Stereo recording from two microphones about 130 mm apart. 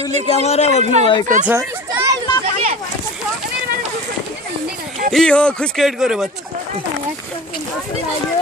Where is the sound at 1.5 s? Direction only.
25° right (ahead or behind).